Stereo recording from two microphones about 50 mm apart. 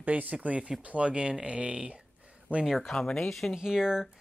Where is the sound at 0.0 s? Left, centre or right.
Right.